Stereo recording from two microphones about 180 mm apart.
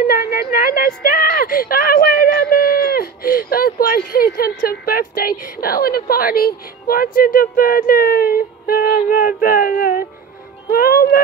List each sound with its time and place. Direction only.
0.0 s speech: 55° left (ahead or behind)
10.7 s music: 55° left (ahead or behind)